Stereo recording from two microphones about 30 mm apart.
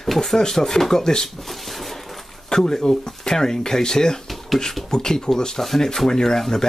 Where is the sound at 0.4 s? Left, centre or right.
Centre.